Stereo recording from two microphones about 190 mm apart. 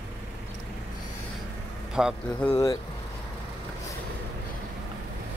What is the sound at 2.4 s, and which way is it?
Speech, 15° left (ahead or behind).